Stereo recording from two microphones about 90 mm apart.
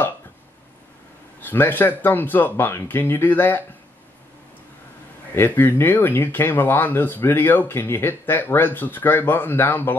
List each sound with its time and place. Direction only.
1.4 s speech: 20° left (ahead or behind)
5.3 s speech: 25° left (ahead or behind)